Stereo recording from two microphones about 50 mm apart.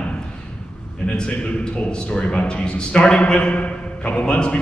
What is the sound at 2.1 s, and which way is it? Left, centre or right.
Speech, centre.